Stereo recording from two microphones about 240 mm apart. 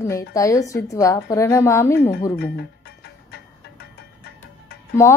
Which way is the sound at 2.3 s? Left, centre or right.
Left.